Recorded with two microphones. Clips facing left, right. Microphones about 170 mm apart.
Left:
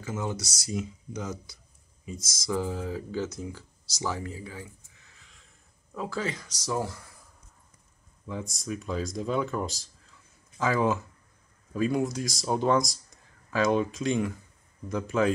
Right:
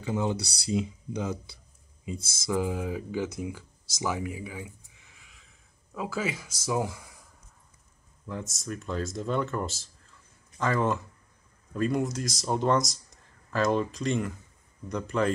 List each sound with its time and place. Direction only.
0.0 s speech: 20° right (ahead or behind)
2.5 s speech: 15° right (ahead or behind)
8.3 s speech: centre (ahead or behind)